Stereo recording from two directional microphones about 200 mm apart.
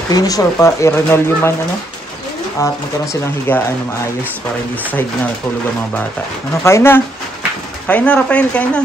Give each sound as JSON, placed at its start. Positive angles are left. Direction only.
{"t": 0.1, "sound": "speech", "side_deg": 20}
{"t": 2.6, "sound": "speech", "side_deg": 10}
{"t": 6.6, "sound": "speech", "side_deg": 10}